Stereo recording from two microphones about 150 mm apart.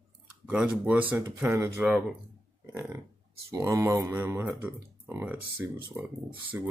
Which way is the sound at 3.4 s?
20° right (ahead or behind).